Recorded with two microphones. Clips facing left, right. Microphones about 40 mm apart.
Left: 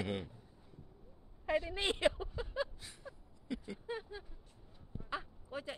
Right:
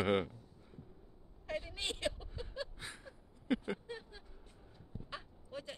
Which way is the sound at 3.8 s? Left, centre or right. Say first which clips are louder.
Left 5 dB; centre.